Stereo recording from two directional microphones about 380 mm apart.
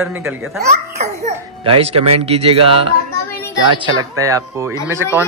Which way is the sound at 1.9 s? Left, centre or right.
Right.